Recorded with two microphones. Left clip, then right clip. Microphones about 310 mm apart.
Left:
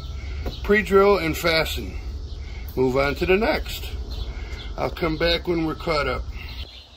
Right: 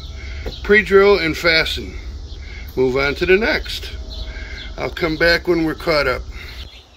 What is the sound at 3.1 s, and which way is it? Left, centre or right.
Speech, centre.